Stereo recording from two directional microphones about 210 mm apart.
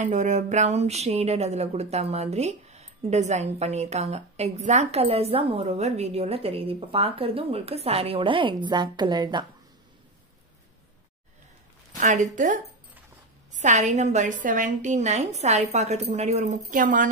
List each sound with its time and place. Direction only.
0.0 s speech: 35° right (ahead or behind)
12.0 s speech: 35° right (ahead or behind)